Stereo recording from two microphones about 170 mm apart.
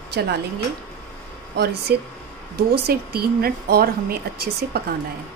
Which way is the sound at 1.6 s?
70° right (ahead or behind).